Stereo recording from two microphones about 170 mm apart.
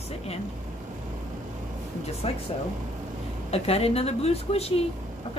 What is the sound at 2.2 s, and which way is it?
Speech, 35° left (ahead or behind).